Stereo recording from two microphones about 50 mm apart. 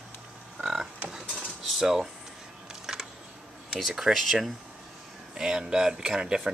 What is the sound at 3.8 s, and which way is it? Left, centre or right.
Speech, centre.